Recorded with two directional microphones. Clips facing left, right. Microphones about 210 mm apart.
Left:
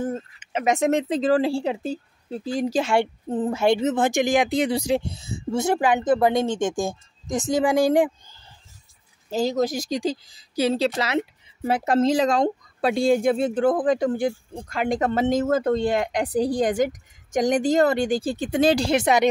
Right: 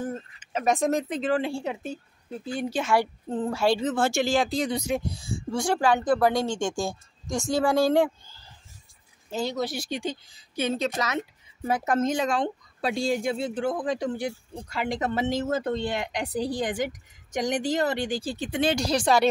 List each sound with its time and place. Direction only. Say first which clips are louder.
0.1 s speech: left 4 dB; 20° left (ahead or behind)
10.0 s a woman's voice: left 6 dB; 35° left (ahead or behind)
12.8 s speech: left 7 dB; 55° left (ahead or behind); by 18.9 s 40° left (ahead or behind)
18.9 s speech: left 3 dB; 20° left (ahead or behind)